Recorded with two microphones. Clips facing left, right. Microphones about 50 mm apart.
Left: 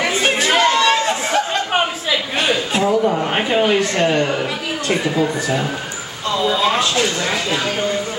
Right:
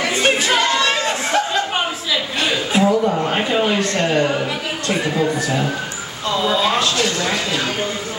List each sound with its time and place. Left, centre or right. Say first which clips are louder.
0.2 s chatter: left 1 dB; centre
2.7 s chuckle: right 2 dB; centre
3.3 s speech: left 1 dB; centre
5.1 s speech: even; centre